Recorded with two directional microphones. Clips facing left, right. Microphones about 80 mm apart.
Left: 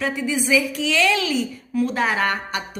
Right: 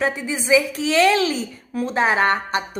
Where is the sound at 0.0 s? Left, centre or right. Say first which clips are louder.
Even; right.